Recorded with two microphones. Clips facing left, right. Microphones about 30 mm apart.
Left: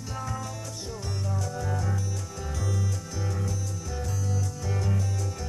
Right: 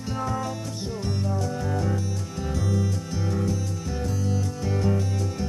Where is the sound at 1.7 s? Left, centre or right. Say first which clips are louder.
Right 5 dB; right.